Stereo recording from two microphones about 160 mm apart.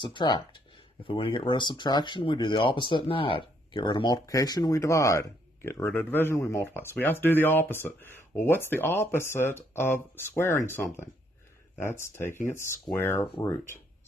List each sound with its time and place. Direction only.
0.0 s speech: 30° left (ahead or behind)